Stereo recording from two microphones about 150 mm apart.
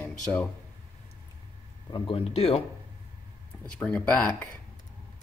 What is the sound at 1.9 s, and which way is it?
Speech, 35° left (ahead or behind).